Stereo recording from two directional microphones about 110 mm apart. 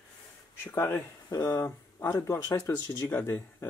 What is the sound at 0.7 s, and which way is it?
Speech, 25° left (ahead or behind).